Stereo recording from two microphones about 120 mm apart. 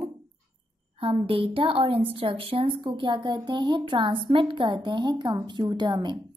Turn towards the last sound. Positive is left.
turn(degrees=-35)  # may be behind; listen again after turning